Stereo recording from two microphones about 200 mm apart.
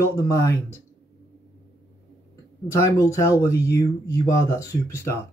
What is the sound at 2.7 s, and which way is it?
Speech, 15° left (ahead or behind).